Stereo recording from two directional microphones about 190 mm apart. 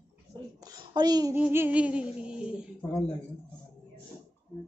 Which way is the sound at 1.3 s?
10° right (ahead or behind).